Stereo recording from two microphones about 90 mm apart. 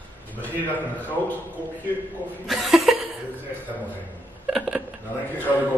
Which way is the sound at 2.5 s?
Centre (ahead or behind).